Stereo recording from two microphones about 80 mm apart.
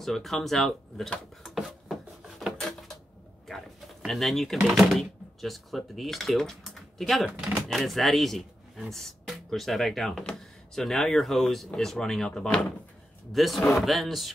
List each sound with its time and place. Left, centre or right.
0.0 s speech: centre
1.5 s a sound: centre
3.4 s pigeon: centre
4.7 s speech: centre
7.2 s speech: centre
7.6 s speech: centre
13.3 s speech: centre